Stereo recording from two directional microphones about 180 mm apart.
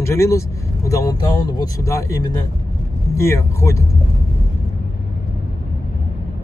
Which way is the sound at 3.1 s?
15° left (ahead or behind).